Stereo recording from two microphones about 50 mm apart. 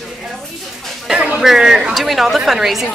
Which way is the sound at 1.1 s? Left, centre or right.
Right.